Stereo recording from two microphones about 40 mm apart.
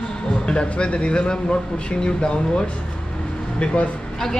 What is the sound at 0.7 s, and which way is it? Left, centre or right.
Speech, left.